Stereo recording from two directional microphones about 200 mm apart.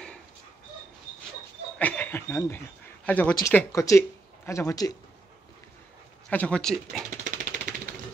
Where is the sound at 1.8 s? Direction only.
10° left (ahead or behind).